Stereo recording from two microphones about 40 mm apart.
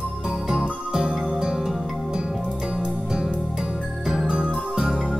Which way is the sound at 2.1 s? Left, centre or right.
Right.